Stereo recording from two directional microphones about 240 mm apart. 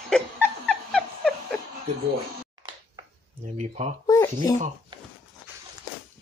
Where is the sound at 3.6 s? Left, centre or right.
Right.